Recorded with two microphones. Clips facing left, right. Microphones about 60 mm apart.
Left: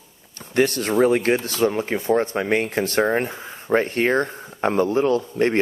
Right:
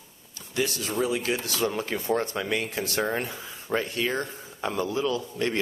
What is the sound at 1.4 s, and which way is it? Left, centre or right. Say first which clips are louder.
Speech: left 7 dB; left.